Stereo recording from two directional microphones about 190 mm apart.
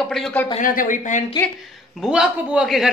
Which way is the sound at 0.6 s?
45° left (ahead or behind).